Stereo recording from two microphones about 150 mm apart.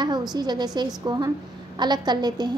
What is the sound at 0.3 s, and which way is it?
A woman's voice, 30° right (ahead or behind).